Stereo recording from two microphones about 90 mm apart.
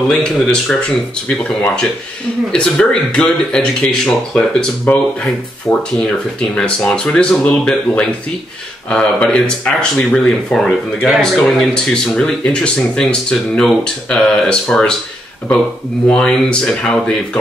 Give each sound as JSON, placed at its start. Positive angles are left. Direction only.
{"t": 0.1, "sound": "speech", "side_deg": 5}
{"t": 2.5, "sound": "speech", "side_deg": 10}
{"t": 4.9, "sound": "speech", "side_deg": 15}
{"t": 16.1, "sound": "speech", "side_deg": 10}